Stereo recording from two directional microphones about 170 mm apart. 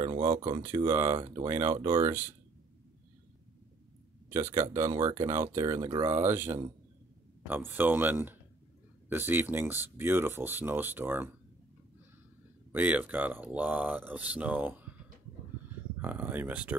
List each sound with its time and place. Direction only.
0.0 s a sound: 20° right (ahead or behind)
0.3 s speech: 35° right (ahead or behind)
0.6 s speech: 15° right (ahead or behind)
4.3 s speech: 15° right (ahead or behind)
12.7 s speech: 10° right (ahead or behind)
16.0 s speech: 10° right (ahead or behind)